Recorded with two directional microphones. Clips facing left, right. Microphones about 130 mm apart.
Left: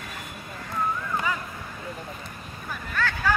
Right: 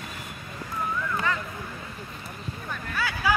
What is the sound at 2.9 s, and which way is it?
Hubbub, 10° right (ahead or behind).